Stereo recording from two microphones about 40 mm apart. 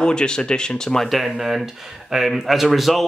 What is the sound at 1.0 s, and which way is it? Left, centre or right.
Speech, centre.